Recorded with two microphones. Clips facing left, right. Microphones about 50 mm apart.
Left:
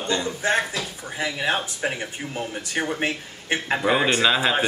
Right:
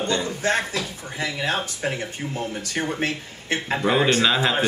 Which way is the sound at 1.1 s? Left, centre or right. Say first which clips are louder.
Left 1 dB; centre.